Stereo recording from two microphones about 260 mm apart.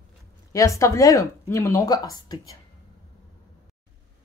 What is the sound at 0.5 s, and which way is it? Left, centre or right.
Speech, centre.